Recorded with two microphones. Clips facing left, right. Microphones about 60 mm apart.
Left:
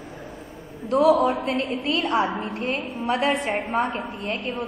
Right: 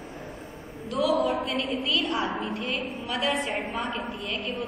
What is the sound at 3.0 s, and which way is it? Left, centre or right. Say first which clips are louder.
Speech: left 6 dB; left.